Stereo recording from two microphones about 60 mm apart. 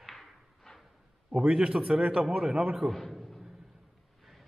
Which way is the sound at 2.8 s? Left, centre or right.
Centre.